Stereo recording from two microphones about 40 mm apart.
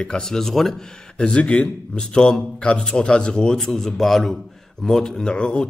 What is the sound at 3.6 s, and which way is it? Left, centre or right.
Speech, centre.